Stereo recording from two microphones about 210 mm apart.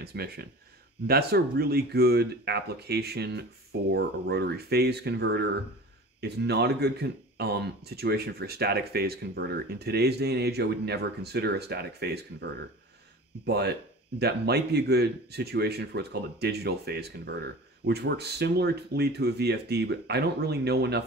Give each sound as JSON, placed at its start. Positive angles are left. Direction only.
{"t": 0.0, "sound": "speech", "side_deg": -50}
{"t": 13.5, "sound": "speech", "side_deg": -50}